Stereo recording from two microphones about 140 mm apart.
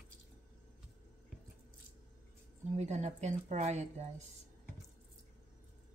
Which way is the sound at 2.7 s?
55° right (ahead or behind).